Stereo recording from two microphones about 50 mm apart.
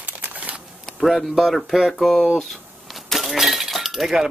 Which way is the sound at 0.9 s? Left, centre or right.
Centre.